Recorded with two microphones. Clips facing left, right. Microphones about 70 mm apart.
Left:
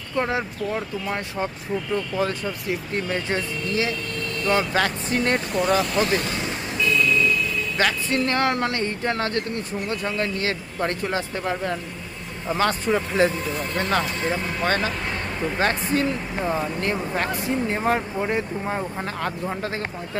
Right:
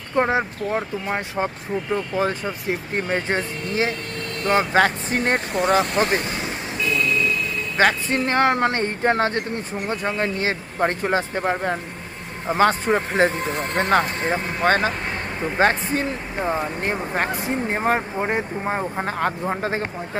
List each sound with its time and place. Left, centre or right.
0.1 s speech: right
2.7 s speech: right
5.7 s speech: right
6.0 s vehicle: right
7.8 s speech: right